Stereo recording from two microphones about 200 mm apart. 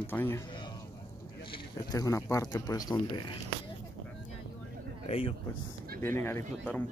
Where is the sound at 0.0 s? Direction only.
10° left (ahead or behind).